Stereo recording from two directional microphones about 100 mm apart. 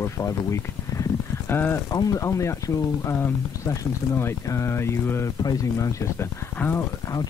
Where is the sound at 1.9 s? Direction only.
35° left (ahead or behind).